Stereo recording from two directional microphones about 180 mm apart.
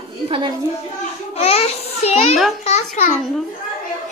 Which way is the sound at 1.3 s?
35° left (ahead or behind).